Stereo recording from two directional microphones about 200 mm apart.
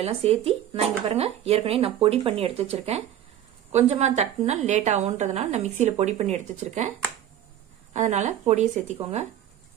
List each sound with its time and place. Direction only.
0.0 s a woman's voice: 30° right (ahead or behind)
7.9 s a woman's voice: 35° right (ahead or behind)